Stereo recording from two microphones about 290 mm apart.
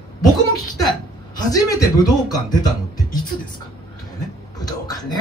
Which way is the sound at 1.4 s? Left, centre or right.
Centre.